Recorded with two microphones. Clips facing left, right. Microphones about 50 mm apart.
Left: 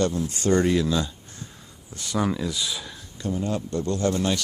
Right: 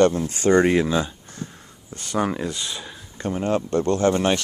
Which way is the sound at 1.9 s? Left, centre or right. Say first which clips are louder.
Right 2 dB; right.